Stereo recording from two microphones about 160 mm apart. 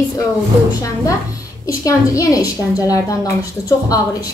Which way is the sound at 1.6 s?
20° left (ahead or behind).